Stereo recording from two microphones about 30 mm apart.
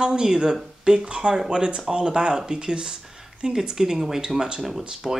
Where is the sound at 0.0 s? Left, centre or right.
Right.